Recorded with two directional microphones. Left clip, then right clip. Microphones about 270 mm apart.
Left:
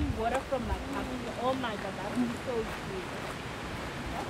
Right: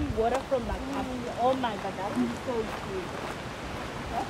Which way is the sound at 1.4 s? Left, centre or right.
Right.